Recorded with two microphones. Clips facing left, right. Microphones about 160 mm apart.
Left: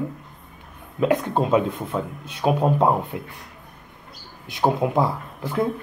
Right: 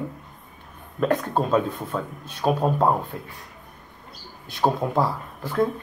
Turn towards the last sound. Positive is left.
turn(degrees=15)  # may be behind; listen again after turning